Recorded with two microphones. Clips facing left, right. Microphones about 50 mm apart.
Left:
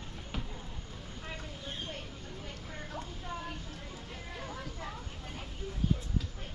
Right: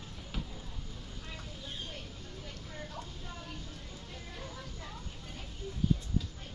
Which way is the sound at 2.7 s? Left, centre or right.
Left.